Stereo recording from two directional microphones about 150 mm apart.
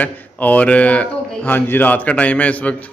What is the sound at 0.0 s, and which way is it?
A man's voice, 10° left (ahead or behind).